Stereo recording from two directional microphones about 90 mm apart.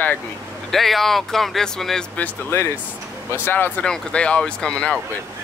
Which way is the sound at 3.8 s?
10° left (ahead or behind).